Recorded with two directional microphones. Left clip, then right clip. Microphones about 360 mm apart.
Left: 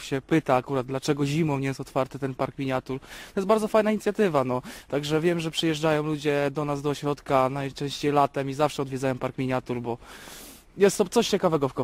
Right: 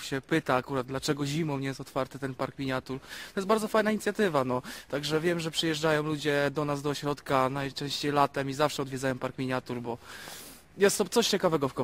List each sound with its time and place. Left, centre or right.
0.0 s speech: left